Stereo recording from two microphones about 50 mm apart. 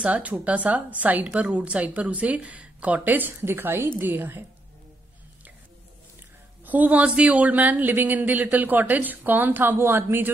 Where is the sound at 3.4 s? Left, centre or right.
Right.